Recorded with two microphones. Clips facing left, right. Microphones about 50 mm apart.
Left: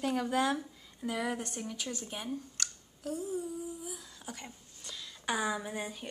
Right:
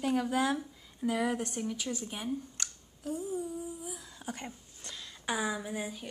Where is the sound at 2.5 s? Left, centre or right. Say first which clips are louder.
Left 1 dB; right.